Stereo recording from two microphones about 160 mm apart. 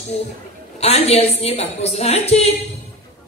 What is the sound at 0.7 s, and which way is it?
A woman's voice, 40° left (ahead or behind).